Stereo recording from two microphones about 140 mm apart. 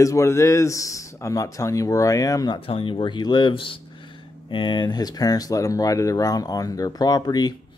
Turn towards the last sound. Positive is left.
turn(degrees=30)  # may be behind; listen again after turning